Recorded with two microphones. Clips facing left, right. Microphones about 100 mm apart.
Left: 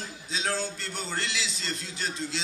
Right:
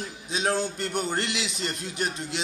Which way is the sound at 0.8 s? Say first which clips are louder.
Right 7 dB; 60° right (ahead or behind).